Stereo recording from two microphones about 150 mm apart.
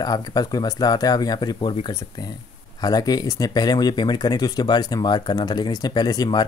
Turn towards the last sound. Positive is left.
turn(degrees=25)  # may be behind; listen again after turning